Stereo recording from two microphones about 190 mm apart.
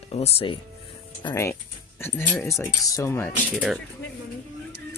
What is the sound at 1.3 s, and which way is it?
Speech, 15° left (ahead or behind).